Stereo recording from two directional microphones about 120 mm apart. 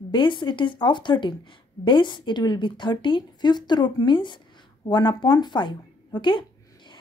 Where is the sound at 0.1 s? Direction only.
40° left (ahead or behind).